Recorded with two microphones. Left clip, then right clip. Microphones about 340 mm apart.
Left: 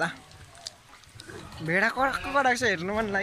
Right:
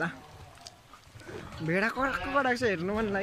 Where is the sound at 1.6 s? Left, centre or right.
Centre.